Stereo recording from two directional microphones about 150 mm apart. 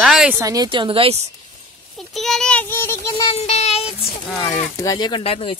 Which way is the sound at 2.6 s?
15° left (ahead or behind).